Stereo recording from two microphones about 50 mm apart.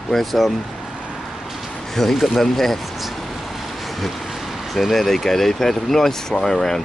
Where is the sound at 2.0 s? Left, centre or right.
Centre.